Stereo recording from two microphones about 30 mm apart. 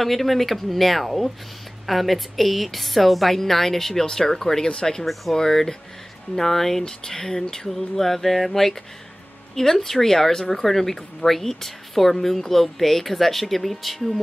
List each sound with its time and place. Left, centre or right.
0.0 s speech: centre
6.8 s speech: left; by 14.2 s centre